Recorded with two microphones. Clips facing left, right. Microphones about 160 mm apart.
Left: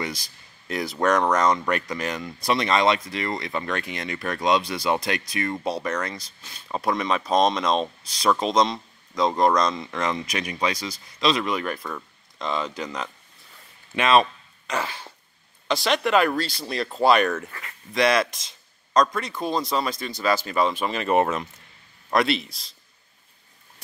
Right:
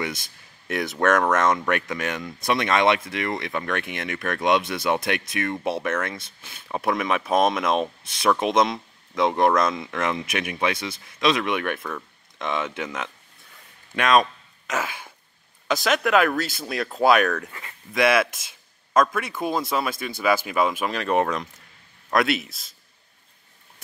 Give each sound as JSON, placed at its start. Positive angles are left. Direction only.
{"t": 0.7, "sound": "speech", "side_deg": 0}
{"t": 15.7, "sound": "speech", "side_deg": 0}
{"t": 17.5, "sound": "speech", "side_deg": -20}
{"t": 17.9, "sound": "speech", "side_deg": -5}
{"t": 20.8, "sound": "speech", "side_deg": 0}